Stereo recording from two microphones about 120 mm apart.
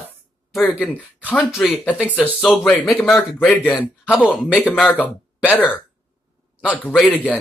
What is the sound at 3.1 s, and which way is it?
Speech, 15° left (ahead or behind).